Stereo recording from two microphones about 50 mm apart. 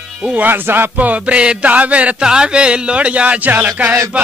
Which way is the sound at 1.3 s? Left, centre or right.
Right.